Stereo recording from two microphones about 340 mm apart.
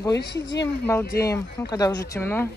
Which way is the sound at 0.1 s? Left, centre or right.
Left.